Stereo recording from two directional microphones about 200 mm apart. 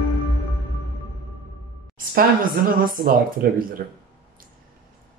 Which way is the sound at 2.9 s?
45° right (ahead or behind).